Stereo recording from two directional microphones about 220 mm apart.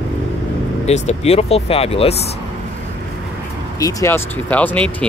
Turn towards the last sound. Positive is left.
turn(degrees=5)  # may be behind; listen again after turning